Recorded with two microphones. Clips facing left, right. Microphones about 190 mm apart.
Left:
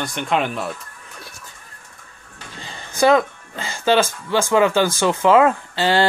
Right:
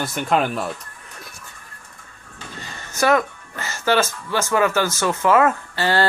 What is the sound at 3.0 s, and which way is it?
Speech, 15° left (ahead or behind).